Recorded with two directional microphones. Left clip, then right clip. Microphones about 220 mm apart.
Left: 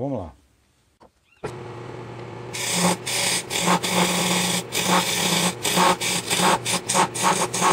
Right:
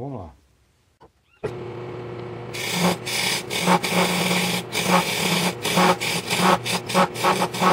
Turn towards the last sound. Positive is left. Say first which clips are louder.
# right 1 dB
turn(degrees=0)  # may be behind; listen again after turning